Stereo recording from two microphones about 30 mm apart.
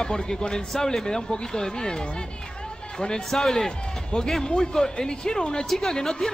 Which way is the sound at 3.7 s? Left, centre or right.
Left.